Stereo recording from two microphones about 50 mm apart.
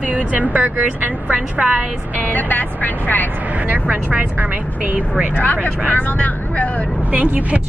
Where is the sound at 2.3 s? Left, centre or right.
Left.